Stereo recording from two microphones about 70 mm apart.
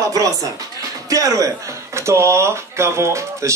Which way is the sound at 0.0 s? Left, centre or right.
Right.